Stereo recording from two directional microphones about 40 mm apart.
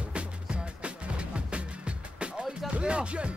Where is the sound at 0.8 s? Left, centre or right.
Right.